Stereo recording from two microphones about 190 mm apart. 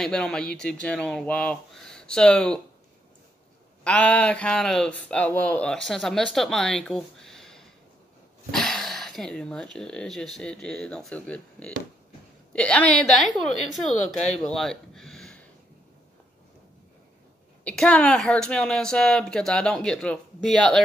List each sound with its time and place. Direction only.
0.0 s speech: 5° left (ahead or behind)
3.8 s speech: 5° left (ahead or behind)
14.1 s speech: 35° left (ahead or behind)
14.4 s a sound: centre (ahead or behind)
17.6 s speech: 5° left (ahead or behind)